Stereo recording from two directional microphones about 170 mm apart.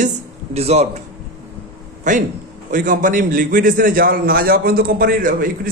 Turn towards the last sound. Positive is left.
turn(degrees=-55)  # may be behind; listen again after turning